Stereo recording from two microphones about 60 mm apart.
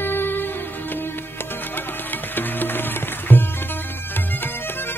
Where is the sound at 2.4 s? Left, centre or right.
Left.